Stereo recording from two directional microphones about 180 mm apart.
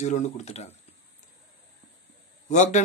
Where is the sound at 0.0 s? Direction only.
40° left (ahead or behind).